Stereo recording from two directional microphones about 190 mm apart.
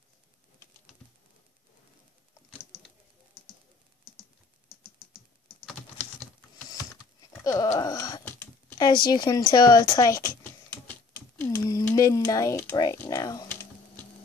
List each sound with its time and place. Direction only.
6.7 s typing: 20° left (ahead or behind)
8.7 s speech: 20° left (ahead or behind)